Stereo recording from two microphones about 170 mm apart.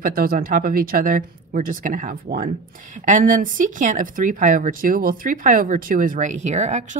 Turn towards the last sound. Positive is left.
turn(degrees=-45)  # may be behind; listen again after turning